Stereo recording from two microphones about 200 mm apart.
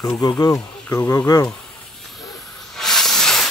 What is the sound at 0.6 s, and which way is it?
Speech, 10° left (ahead or behind).